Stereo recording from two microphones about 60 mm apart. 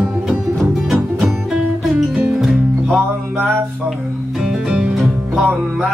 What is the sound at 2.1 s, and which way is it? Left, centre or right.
Music, centre.